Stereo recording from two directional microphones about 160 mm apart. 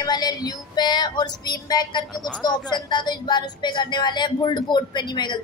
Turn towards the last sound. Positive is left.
turn(degrees=30)  # may be behind; listen again after turning